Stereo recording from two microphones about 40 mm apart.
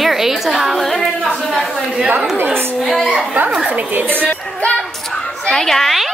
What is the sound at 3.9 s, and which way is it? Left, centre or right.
Speech, right.